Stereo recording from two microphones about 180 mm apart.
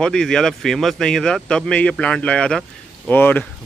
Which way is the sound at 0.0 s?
5° left (ahead or behind).